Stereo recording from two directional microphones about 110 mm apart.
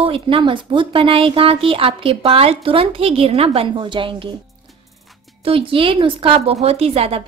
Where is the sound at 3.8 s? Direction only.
45° right (ahead or behind).